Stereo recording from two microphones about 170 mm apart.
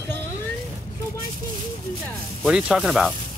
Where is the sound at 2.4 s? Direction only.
5° right (ahead or behind).